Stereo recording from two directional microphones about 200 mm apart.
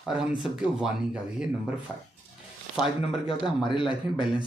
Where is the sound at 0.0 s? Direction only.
5° right (ahead or behind).